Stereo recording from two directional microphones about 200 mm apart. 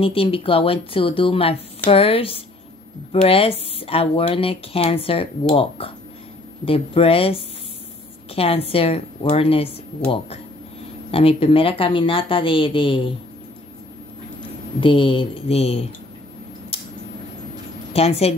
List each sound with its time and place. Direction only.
0.0 s speech: 30° left (ahead or behind)
11.1 s speech: 30° left (ahead or behind)
14.8 s speech: 25° left (ahead or behind)
16.7 s a sound: 30° left (ahead or behind)
17.9 s a woman's voice: 30° left (ahead or behind)